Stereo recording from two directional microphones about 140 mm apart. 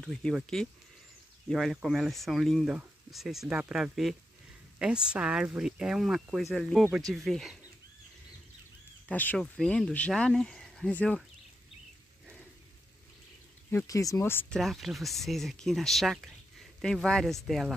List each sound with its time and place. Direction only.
0.0 s speech: 5° left (ahead or behind)
9.1 s speech: 10° left (ahead or behind)
13.7 s speech: 20° left (ahead or behind)
14.6 s speech: centre (ahead or behind)